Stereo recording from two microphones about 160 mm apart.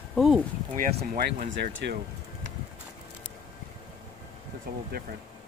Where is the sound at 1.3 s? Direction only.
55° right (ahead or behind).